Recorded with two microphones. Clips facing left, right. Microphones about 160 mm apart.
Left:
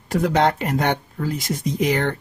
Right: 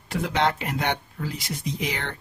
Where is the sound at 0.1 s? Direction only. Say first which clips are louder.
Left 6 dB; 45° left (ahead or behind).